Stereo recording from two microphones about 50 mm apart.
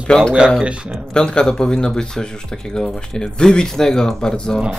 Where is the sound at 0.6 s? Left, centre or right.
Right.